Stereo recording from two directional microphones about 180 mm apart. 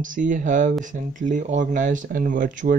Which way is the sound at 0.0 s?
45° right (ahead or behind).